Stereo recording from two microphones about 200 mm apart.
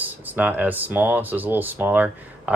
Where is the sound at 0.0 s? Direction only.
10° right (ahead or behind).